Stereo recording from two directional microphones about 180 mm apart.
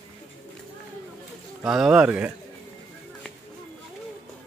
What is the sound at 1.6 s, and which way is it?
Speech, 5° right (ahead or behind).